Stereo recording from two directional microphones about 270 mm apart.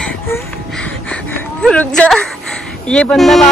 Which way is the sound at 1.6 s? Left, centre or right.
Centre.